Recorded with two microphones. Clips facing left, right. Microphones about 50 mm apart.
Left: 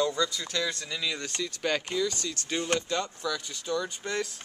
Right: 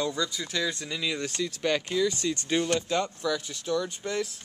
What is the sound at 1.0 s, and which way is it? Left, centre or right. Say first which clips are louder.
Speech: right 3 dB; centre.